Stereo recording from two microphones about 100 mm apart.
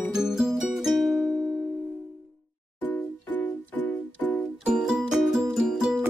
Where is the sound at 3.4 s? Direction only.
15° left (ahead or behind).